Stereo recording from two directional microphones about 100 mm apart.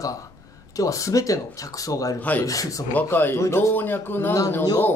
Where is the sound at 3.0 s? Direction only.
20° left (ahead or behind).